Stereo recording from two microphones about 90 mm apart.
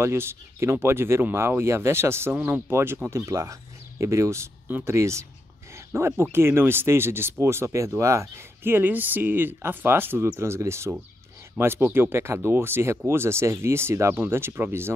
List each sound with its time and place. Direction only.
0.0 s speech: 25° right (ahead or behind)